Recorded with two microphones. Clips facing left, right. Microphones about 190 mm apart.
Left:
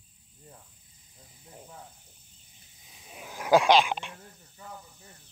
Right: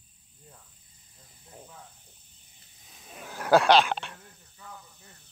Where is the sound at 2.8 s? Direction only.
5° left (ahead or behind).